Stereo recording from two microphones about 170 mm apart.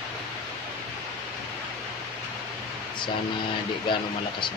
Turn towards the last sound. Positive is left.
turn(degrees=30)  # may be behind; listen again after turning